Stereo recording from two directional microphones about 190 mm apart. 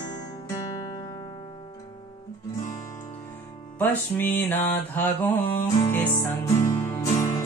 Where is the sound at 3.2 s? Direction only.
10° left (ahead or behind).